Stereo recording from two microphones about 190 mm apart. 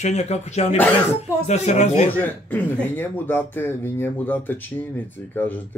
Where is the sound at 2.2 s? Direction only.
10° left (ahead or behind).